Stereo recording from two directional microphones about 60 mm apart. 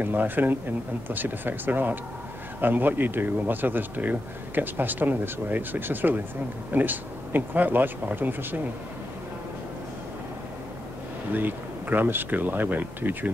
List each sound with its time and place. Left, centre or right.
0.0 s speech: right
11.3 s speech: right